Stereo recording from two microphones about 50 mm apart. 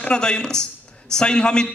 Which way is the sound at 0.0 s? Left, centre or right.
Centre.